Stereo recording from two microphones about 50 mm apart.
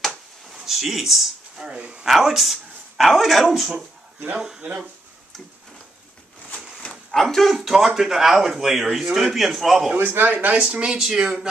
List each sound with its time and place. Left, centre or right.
0.6 s speech: centre
1.6 s speech: right
2.0 s speech: centre
7.1 s speech: centre
7.5 s speech: centre
9.9 s a man's voice: right
10.6 s speech: right